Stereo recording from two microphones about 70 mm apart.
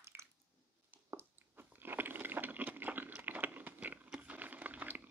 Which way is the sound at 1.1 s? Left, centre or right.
Right.